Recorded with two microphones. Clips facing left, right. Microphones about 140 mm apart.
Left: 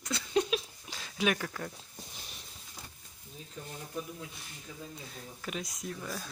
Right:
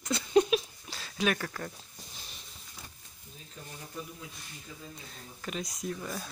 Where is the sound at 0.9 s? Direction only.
15° left (ahead or behind).